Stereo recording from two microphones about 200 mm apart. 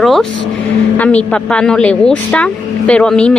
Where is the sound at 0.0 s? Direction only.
Centre (ahead or behind).